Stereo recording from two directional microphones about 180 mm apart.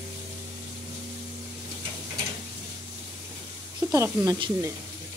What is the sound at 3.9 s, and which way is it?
Speech, 15° right (ahead or behind).